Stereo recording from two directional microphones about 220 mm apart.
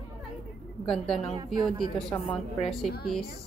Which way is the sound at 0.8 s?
Centre (ahead or behind).